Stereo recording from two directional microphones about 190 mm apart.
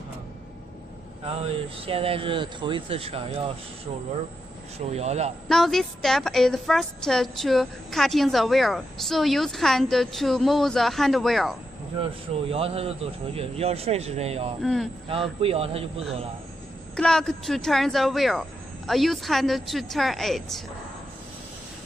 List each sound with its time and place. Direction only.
1.2 s speech: 30° right (ahead or behind)
4.7 s speech: 35° right (ahead or behind)
5.5 s a woman's voice: centre (ahead or behind)
12.4 s speech: 30° right (ahead or behind)
14.6 s a woman's voice: centre (ahead or behind)
15.0 s speech: 30° right (ahead or behind)
16.9 s a woman's voice: 5° left (ahead or behind)